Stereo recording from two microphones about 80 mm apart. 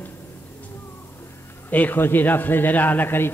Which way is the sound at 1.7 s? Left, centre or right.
Left.